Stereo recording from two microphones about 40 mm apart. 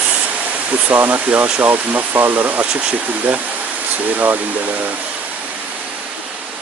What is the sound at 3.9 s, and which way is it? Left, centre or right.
Speech, right.